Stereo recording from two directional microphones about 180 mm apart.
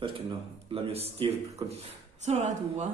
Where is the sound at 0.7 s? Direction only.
35° right (ahead or behind).